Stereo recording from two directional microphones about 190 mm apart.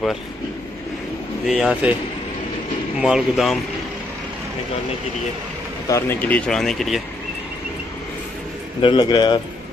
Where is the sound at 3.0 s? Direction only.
5° right (ahead or behind).